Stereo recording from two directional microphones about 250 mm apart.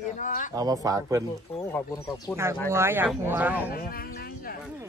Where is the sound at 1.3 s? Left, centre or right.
Centre.